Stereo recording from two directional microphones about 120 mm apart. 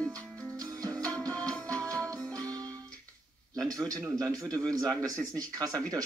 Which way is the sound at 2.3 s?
30° right (ahead or behind).